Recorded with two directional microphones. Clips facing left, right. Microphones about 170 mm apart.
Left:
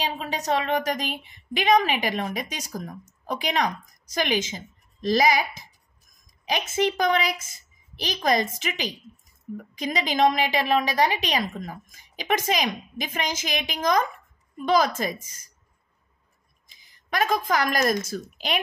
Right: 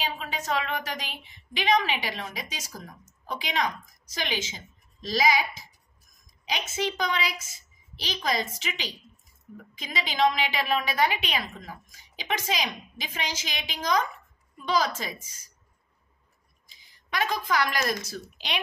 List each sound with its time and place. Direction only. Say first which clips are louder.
0.0 s a woman's voice: left 4 dB; 40° left (ahead or behind)
6.4 s a woman's voice: left 6 dB; 50° left (ahead or behind)
17.1 s a woman's voice: left 4 dB; 45° left (ahead or behind)